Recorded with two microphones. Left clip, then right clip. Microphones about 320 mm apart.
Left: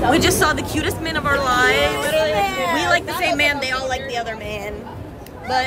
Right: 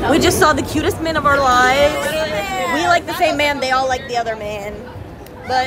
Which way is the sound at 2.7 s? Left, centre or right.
Centre.